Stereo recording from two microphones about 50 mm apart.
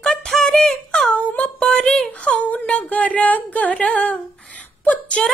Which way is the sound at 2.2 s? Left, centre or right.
Left.